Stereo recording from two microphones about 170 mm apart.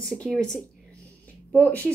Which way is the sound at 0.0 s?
5° left (ahead or behind).